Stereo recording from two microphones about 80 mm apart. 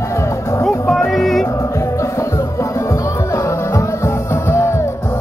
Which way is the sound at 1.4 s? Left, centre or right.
Left.